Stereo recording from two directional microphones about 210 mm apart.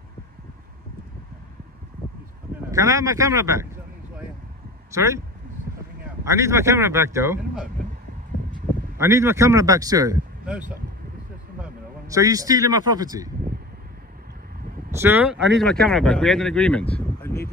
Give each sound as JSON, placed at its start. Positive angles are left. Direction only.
{"t": 2.7, "sound": "a man's voice", "side_deg": -15}
{"t": 4.9, "sound": "a man's voice", "side_deg": -15}
{"t": 6.2, "sound": "a man's voice", "side_deg": -15}
{"t": 8.9, "sound": "a man's voice", "side_deg": -10}
{"t": 10.4, "sound": "speech", "side_deg": -5}
{"t": 12.1, "sound": "a man's voice", "side_deg": -15}
{"t": 14.9, "sound": "speech", "side_deg": -10}